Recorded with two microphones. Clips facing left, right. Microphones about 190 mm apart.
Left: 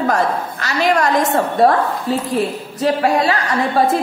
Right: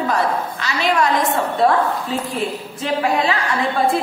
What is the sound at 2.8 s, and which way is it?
Speech, 40° left (ahead or behind).